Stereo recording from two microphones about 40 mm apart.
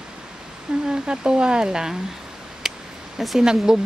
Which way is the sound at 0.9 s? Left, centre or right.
Right.